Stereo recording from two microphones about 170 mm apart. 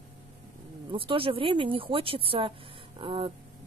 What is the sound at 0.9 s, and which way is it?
Speech, 30° right (ahead or behind).